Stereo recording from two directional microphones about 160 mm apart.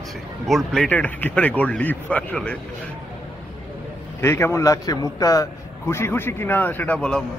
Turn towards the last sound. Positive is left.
turn(degrees=5)  # may be behind; listen again after turning